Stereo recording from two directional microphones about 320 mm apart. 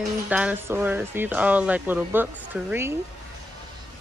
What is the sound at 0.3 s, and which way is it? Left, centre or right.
Speech, centre.